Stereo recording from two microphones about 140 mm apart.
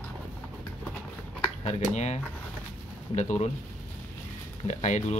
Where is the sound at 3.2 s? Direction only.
55° left (ahead or behind).